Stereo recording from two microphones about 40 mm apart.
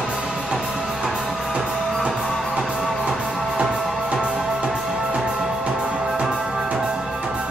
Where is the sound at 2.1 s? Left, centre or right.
Centre.